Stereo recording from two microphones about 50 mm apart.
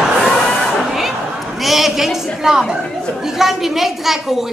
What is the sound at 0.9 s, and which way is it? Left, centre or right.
A woman's voice, centre.